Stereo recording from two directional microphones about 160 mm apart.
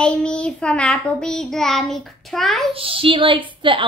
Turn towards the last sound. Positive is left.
turn(degrees=-30)  # may be behind; listen again after turning